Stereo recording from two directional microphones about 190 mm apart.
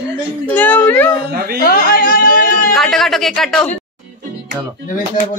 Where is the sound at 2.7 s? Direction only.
Centre (ahead or behind).